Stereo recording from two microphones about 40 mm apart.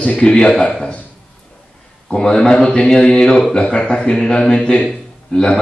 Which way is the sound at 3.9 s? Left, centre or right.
Centre.